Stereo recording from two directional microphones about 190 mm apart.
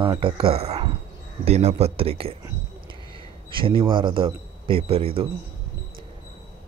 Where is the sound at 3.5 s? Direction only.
25° right (ahead or behind).